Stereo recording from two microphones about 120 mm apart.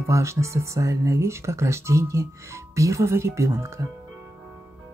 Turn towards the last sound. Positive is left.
turn(degrees=-25)  # may be behind; listen again after turning